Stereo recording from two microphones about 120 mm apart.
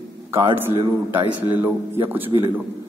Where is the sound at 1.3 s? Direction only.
15° right (ahead or behind).